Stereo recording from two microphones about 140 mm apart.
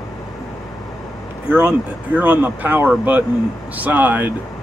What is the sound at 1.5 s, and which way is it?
Speech, 15° right (ahead or behind).